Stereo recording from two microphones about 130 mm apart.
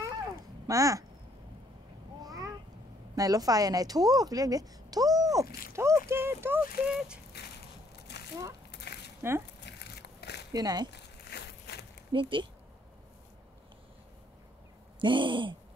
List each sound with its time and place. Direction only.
0.7 s a woman's voice: 25° right (ahead or behind)
2.2 s a sound: 30° right (ahead or behind)
3.2 s a woman's voice: 30° right (ahead or behind)
6.9 s speech: 5° right (ahead or behind)
9.2 s speech: 20° right (ahead or behind)
10.5 s a woman's voice: 30° right (ahead or behind)
12.1 s owl: 40° right (ahead or behind)
15.0 s owl: 40° right (ahead or behind)